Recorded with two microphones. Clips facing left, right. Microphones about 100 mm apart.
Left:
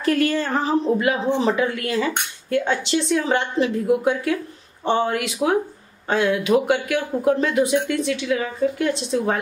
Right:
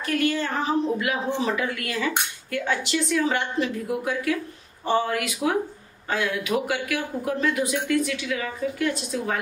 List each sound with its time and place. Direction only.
0.0 s a woman's voice: 35° left (ahead or behind)